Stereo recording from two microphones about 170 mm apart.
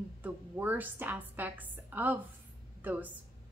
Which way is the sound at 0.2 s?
10° right (ahead or behind).